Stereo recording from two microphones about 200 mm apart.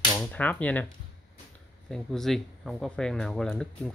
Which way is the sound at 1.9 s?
Centre (ahead or behind).